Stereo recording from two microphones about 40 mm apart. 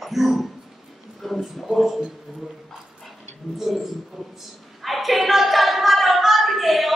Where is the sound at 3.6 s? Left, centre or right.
Centre.